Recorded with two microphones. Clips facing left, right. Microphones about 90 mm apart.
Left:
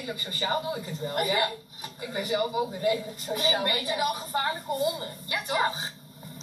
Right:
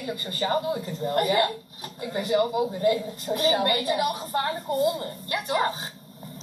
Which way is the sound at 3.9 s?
5° left (ahead or behind).